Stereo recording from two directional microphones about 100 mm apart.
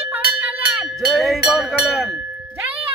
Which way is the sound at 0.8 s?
5° right (ahead or behind).